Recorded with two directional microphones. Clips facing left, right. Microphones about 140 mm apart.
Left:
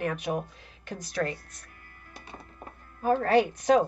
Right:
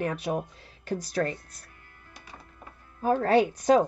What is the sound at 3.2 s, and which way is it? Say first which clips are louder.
Speech: right 2 dB; 40° right (ahead or behind).